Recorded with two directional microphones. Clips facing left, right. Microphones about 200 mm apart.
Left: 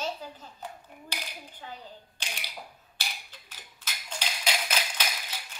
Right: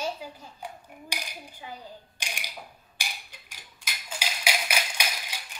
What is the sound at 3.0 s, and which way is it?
Wood block, 15° right (ahead or behind).